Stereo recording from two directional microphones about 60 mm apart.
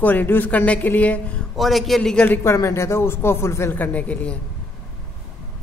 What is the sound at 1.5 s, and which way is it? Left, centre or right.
Speech, centre.